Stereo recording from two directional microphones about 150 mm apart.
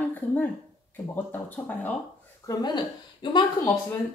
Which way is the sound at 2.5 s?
30° left (ahead or behind).